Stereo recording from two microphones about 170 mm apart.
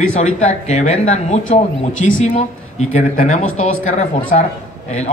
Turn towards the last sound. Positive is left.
turn(degrees=45)  # may be behind; listen again after turning